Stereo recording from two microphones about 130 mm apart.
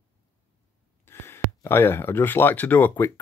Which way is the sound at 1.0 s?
20° left (ahead or behind).